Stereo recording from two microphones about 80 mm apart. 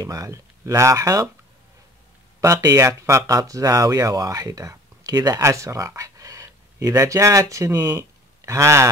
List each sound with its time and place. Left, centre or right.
0.0 s speech: right
2.4 s speech: right
5.4 s speech: right
8.0 s a sound: right